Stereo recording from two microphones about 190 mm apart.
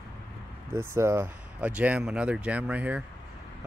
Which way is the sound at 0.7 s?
15° right (ahead or behind).